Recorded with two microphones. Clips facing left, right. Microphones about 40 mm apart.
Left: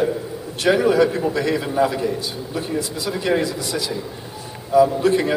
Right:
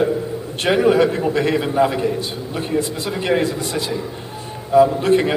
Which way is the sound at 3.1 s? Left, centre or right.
Right.